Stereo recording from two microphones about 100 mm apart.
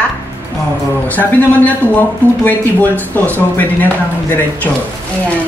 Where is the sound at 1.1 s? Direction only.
15° left (ahead or behind).